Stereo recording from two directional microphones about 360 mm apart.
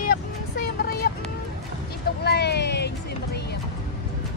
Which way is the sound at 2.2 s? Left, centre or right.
Left.